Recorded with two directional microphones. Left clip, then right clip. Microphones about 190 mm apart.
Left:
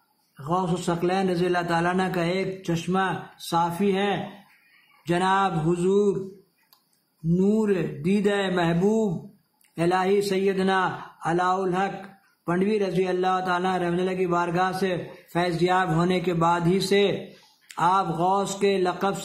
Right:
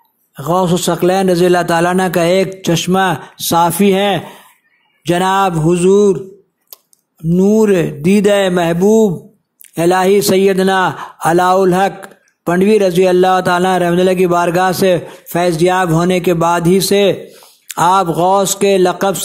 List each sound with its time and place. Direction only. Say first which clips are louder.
0.4 s a man's voice: right 13 dB; 40° right (ahead or behind)
7.3 s a man's voice: right 13 dB; 35° right (ahead or behind)